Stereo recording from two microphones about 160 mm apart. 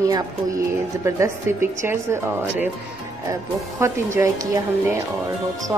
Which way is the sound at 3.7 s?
15° right (ahead or behind).